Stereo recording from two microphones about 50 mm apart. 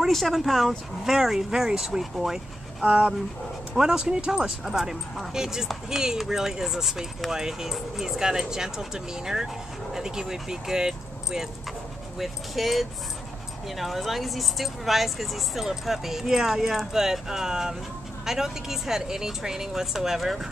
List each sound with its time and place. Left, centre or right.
0.1 s speech: centre
2.8 s speech: right; by 20.4 s centre